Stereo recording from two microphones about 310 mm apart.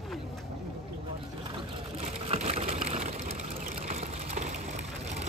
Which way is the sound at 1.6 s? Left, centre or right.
Centre.